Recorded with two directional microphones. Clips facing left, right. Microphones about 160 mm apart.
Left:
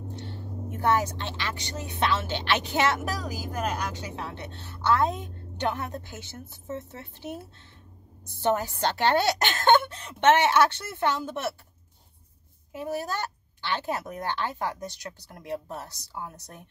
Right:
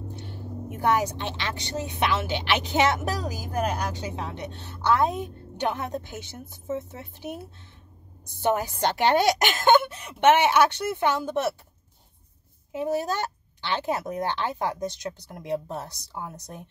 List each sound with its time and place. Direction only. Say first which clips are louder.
0.1 s vehicle: right 1 dB; 15° right (ahead or behind)
2.0 s a woman's voice: even; 15° right (ahead or behind)
3.8 s speech: right 3 dB; 35° right (ahead or behind)
4.1 s a woman's voice: right 3 dB; 20° right (ahead or behind)
12.7 s speech: right 5 dB; 20° right (ahead or behind)